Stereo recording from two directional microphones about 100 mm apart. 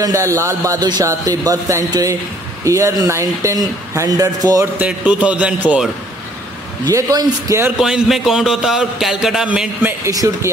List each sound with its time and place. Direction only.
0.0 s speech: 30° right (ahead or behind)
0.7 s speech: 45° right (ahead or behind)
4.7 s a man's voice: 15° right (ahead or behind)
6.9 s speech: 35° right (ahead or behind)
7.7 s a man's voice: 5° right (ahead or behind)
9.8 s speech: 20° right (ahead or behind)
10.1 s speech: 35° right (ahead or behind)